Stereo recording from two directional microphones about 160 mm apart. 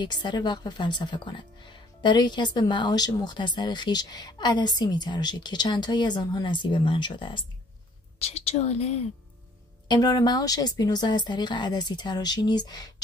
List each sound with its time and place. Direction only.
0.0 s a woman's voice: 30° left (ahead or behind)
9.8 s speech: 25° left (ahead or behind)